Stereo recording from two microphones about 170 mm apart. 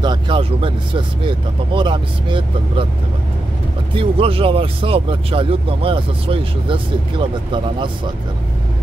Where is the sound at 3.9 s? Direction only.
35° right (ahead or behind).